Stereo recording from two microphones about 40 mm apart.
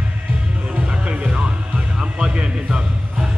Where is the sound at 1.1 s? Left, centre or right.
Right.